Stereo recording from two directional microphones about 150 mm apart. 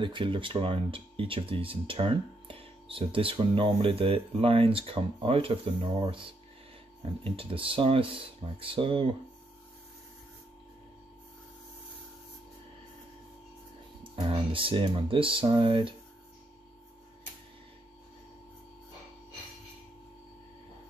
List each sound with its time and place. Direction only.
0.0 s speech: 35° right (ahead or behind)
7.2 s speech: 35° right (ahead or behind)
14.2 s speech: 35° right (ahead or behind)